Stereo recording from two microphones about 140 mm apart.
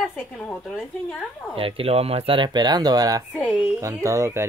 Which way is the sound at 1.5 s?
40° right (ahead or behind).